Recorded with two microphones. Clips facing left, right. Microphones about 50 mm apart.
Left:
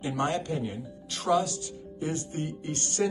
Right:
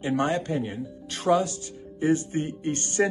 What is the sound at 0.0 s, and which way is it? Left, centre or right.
Speech, right.